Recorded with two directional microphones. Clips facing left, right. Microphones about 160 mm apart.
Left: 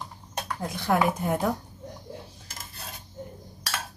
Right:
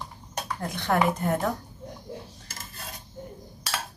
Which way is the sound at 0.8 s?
5° left (ahead or behind).